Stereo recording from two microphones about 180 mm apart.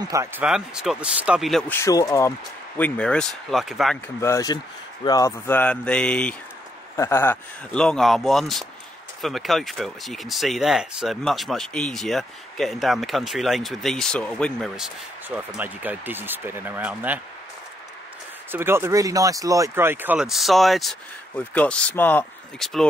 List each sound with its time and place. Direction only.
0.0 s speech: 20° right (ahead or behind)
0.4 s speech: 5° right (ahead or behind)
1.8 s speech: 20° left (ahead or behind)
2.8 s speech: 5° left (ahead or behind)
4.2 s speech: 15° left (ahead or behind)
15.2 s speech: 10° right (ahead or behind)
18.5 s speech: 15° right (ahead or behind)